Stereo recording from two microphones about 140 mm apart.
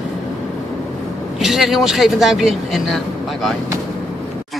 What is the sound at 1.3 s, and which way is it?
A man's voice, centre (ahead or behind).